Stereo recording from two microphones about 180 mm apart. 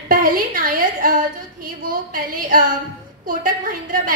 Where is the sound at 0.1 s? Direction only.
50° right (ahead or behind).